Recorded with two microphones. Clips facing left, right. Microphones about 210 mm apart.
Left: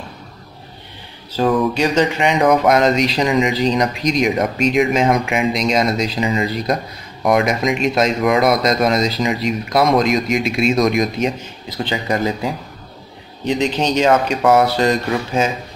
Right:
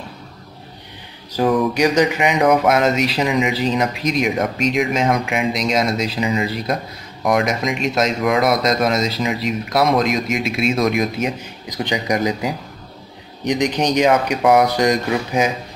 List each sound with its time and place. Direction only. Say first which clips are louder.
1.3 s mantra: even; 10° right (ahead or behind)
1.8 s speech: even; 10° right (ahead or behind)